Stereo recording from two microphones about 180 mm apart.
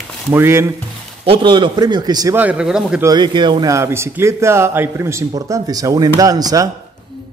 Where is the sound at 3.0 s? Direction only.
25° right (ahead or behind).